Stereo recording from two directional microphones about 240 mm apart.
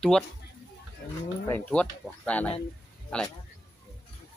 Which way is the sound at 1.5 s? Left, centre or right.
Centre.